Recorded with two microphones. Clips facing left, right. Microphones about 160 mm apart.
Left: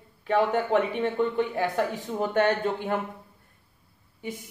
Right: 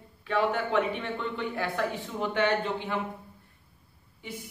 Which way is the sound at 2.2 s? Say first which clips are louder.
Left 3 dB; 45° left (ahead or behind).